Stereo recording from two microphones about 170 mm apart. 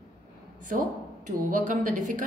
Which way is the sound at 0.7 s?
45° right (ahead or behind).